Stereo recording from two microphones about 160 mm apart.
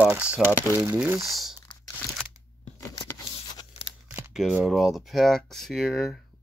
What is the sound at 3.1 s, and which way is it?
Tearing, 25° left (ahead or behind).